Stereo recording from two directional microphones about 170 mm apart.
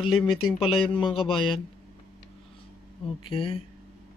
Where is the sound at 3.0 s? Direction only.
30° left (ahead or behind).